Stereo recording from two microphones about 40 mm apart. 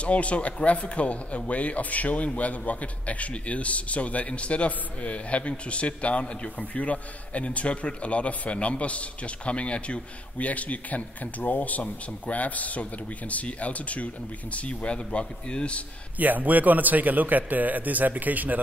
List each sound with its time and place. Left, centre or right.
0.0 s a man's voice: left
16.2 s a man's voice: right